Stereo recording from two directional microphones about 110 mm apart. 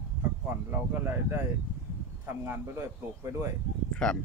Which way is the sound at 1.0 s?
20° right (ahead or behind).